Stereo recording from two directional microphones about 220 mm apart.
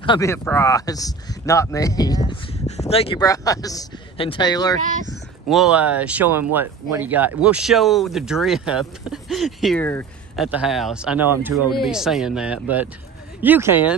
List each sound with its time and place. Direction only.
0.0 s speech: 20° left (ahead or behind)
5.5 s speech: 5° right (ahead or behind)
10.3 s speech: 5° right (ahead or behind)